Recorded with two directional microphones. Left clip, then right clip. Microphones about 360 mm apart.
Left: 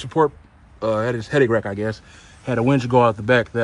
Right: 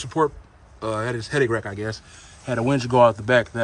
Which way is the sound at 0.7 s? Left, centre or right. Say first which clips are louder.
Left 5 dB; centre.